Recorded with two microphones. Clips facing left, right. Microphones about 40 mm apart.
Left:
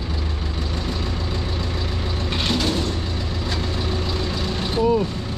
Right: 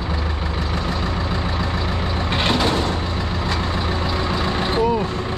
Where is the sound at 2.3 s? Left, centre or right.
Right.